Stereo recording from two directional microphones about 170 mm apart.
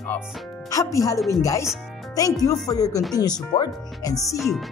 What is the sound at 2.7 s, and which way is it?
Speech, 20° left (ahead or behind).